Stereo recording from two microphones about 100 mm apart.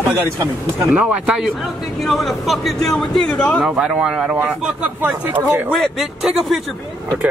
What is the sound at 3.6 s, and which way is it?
Speech, 10° right (ahead or behind).